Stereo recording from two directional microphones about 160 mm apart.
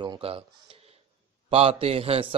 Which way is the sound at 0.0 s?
30° right (ahead or behind).